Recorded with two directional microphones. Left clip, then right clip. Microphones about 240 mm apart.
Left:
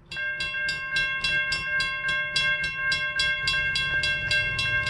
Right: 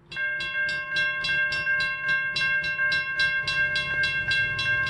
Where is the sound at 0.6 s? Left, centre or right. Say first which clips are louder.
Right 1 dB; left.